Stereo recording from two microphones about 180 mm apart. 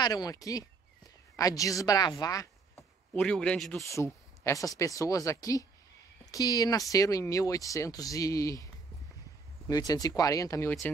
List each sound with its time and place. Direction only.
0.0 s speech: 20° left (ahead or behind)
3.1 s a man's voice: 5° left (ahead or behind)
3.9 s speech: 15° left (ahead or behind)
9.7 s speech: 20° left (ahead or behind)